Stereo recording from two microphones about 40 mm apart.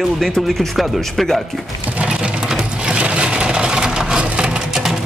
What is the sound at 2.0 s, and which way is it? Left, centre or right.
Sewing machine, right.